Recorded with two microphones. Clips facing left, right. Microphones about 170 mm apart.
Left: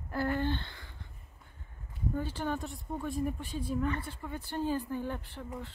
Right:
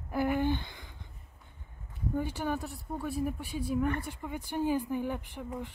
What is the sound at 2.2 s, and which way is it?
Speech, 15° right (ahead or behind).